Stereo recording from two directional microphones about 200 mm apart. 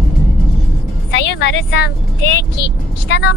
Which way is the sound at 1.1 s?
60° left (ahead or behind).